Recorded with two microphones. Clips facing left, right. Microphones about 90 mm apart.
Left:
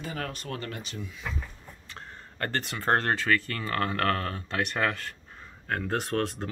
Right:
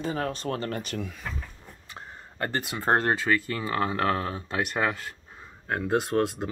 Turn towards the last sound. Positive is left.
turn(degrees=-10)  # may be behind; listen again after turning